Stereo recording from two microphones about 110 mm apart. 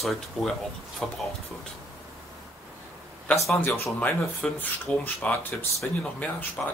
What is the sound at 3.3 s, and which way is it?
A man's voice, 15° left (ahead or behind).